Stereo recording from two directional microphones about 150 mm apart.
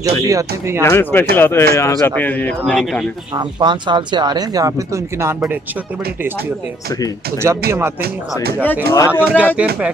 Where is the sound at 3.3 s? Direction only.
30° right (ahead or behind).